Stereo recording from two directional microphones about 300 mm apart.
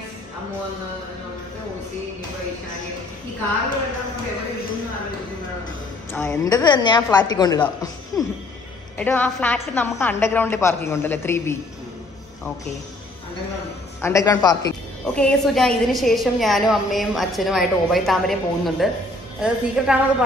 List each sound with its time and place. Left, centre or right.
6.1 s a woman's voice: centre
14.0 s a woman's voice: centre